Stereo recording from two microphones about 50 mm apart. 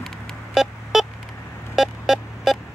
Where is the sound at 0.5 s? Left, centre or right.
Centre.